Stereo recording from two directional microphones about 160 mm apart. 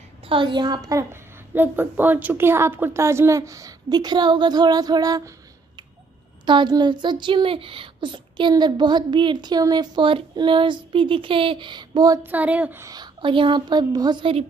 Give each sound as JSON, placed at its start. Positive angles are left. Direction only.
{"t": 0.3, "sound": "speech", "side_deg": -30}
{"t": 1.5, "sound": "speech", "side_deg": -10}
{"t": 6.4, "sound": "speech", "side_deg": -30}
{"t": 12.2, "sound": "speech", "side_deg": -10}
{"t": 12.9, "sound": "speech", "side_deg": -30}